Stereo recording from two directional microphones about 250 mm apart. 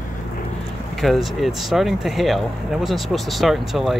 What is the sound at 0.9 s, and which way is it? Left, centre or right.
Speech, centre.